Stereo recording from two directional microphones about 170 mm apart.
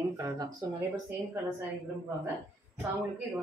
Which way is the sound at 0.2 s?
20° right (ahead or behind).